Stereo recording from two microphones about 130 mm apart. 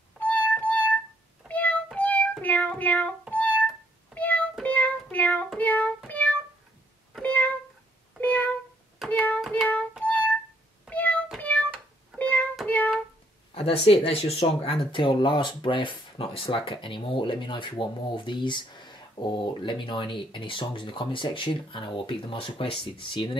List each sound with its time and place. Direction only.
0.2 s music: 10° left (ahead or behind)
5.1 s child singing: 10° left (ahead or behind)
6.0 s music: 10° left (ahead or behind)
7.2 s cat: 10° left (ahead or behind)
9.0 s hands: 10° left (ahead or behind)
9.5 s child singing: 10° left (ahead or behind)
10.0 s music: 10° left (ahead or behind)
12.6 s a sound: 10° left (ahead or behind)
13.8 s speech: 50° left (ahead or behind)